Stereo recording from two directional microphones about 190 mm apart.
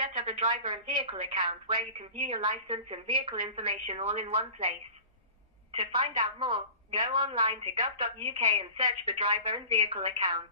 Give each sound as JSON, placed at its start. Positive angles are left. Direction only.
{"t": 0.2, "sound": "a woman's voice", "side_deg": -30}